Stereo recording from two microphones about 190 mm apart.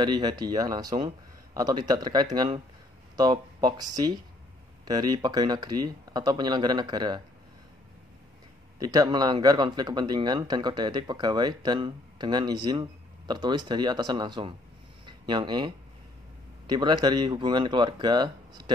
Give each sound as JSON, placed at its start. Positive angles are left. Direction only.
{"t": 0.0, "sound": "speech", "side_deg": -25}
{"t": 8.7, "sound": "speech", "side_deg": -20}